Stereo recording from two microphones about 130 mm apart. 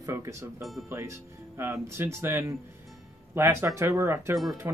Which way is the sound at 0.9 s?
20° right (ahead or behind).